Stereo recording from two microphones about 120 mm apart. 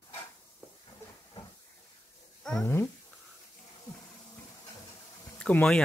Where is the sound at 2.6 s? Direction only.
20° left (ahead or behind).